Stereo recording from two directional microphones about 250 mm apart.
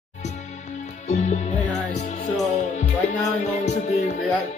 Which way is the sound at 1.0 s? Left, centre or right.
Left.